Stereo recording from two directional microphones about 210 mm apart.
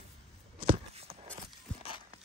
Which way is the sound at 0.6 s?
30° right (ahead or behind).